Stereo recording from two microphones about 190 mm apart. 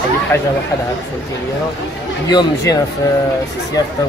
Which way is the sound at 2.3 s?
20° left (ahead or behind).